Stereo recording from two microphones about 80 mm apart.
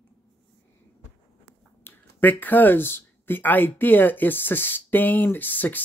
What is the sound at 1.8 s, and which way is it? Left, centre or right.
Speech, left.